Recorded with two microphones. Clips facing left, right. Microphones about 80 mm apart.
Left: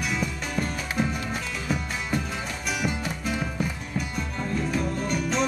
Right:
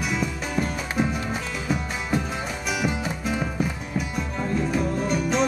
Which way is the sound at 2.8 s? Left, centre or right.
Centre.